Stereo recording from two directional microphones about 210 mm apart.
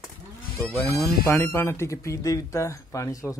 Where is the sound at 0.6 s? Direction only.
10° left (ahead or behind).